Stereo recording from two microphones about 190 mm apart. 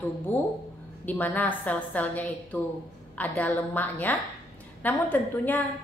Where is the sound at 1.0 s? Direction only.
10° left (ahead or behind).